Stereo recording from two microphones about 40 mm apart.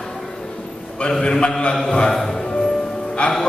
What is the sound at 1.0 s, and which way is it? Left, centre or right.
A man's voice, centre.